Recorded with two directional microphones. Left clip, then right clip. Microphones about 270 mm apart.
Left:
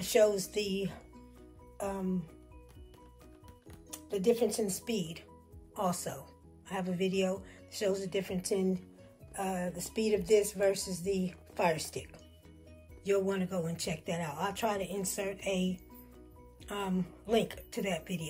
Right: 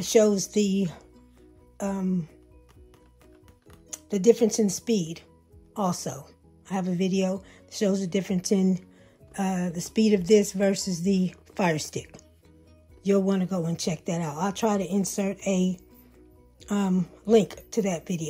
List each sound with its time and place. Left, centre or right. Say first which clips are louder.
0.0 s speech: right 6 dB; right
3.9 s speech: right 9 dB; right